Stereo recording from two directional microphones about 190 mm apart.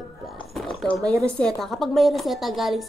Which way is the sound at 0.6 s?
Centre (ahead or behind).